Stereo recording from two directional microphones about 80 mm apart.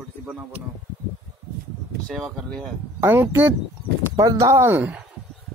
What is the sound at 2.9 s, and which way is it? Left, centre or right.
Speech, right.